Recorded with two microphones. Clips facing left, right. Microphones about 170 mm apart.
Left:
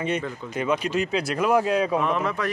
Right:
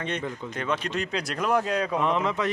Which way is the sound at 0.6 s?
5° left (ahead or behind).